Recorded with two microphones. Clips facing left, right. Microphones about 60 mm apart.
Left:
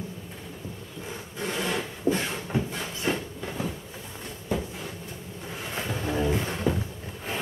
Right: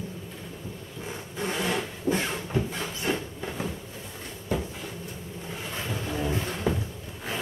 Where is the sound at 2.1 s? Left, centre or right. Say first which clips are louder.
Left 1 dB; left.